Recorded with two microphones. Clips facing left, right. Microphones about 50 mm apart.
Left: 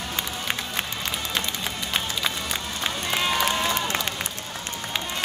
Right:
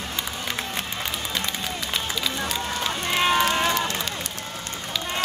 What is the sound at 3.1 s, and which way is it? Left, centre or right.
Run, centre.